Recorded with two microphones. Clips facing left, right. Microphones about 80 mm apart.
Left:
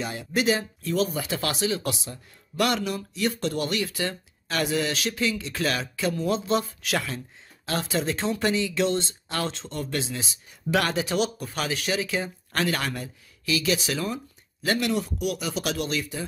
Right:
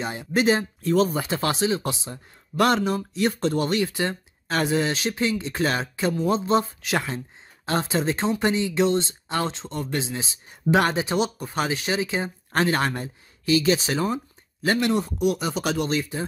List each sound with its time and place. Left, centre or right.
0.0 s speech: right